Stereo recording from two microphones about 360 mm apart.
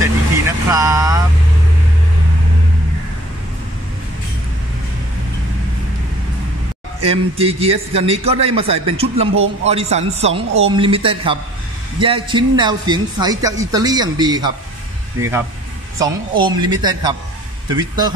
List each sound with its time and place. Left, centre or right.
0.7 s vehicle: centre
7.0 s a man's voice: centre